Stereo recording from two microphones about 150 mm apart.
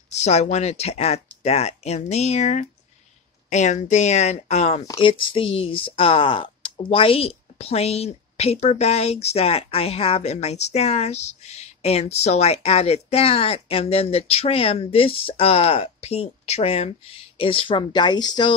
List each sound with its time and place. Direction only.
0.1 s a woman's voice: 45° left (ahead or behind)
4.9 s speech: 35° left (ahead or behind)